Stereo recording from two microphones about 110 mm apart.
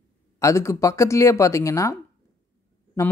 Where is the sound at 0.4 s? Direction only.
25° left (ahead or behind).